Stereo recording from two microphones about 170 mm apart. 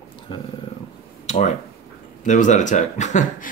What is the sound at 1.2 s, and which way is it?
Speech, 40° left (ahead or behind).